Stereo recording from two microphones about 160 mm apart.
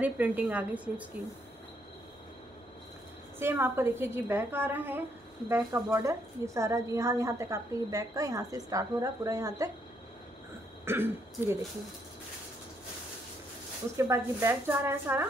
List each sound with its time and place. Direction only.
0.0 s a woman's voice: 10° right (ahead or behind)
3.3 s a woman's voice: 15° right (ahead or behind)
10.9 s a woman's voice: 15° right (ahead or behind)
13.9 s a woman's voice: 15° right (ahead or behind)